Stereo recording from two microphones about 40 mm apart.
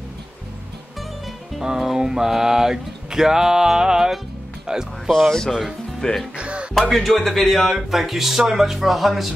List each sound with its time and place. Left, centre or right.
1.6 s a sound: centre
5.9 s speech: centre
6.3 s music: right
6.7 s speech: centre
7.7 s speech: centre